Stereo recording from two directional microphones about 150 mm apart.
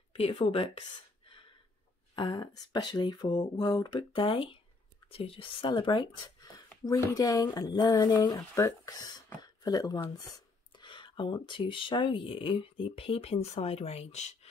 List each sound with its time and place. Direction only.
0.1 s speech: 35° left (ahead or behind)